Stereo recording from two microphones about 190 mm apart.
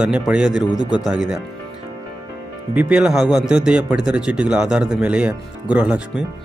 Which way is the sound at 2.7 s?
5° right (ahead or behind).